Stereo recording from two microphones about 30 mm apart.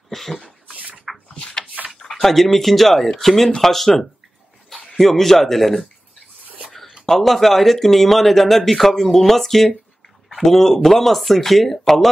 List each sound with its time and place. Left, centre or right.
0.1 s a man's voice: centre
1.1 s a sound: centre
1.8 s tick-tock: right
2.2 s a man's voice: centre
7.1 s a man's voice: centre